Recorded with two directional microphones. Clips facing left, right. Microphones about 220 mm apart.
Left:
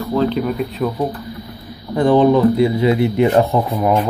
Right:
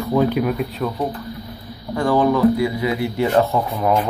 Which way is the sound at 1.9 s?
20° left (ahead or behind).